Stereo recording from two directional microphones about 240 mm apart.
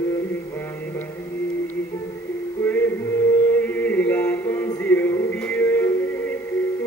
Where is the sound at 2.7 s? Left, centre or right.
Centre.